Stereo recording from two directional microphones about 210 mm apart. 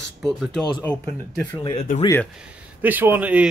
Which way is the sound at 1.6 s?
25° left (ahead or behind).